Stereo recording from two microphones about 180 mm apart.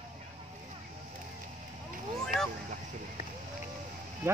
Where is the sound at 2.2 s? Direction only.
5° left (ahead or behind).